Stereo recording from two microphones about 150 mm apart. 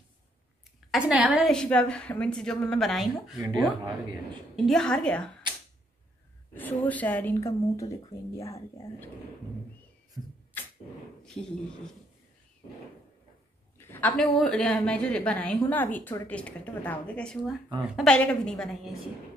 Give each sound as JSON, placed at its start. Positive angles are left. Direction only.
{"t": 0.9, "sound": "a woman's voice", "side_deg": -5}
{"t": 1.5, "sound": "a woman's voice", "side_deg": 5}
{"t": 3.3, "sound": "speech", "side_deg": -25}
{"t": 4.3, "sound": "a woman's voice", "side_deg": 5}
{"t": 6.5, "sound": "a woman's voice", "side_deg": 10}
{"t": 10.2, "sound": "speech", "side_deg": -20}
{"t": 10.6, "sound": "a sound", "side_deg": 15}
{"t": 11.2, "sound": "a woman's voice", "side_deg": 5}
{"t": 13.7, "sound": "a sound", "side_deg": 15}
{"t": 14.4, "sound": "a woman's voice", "side_deg": 5}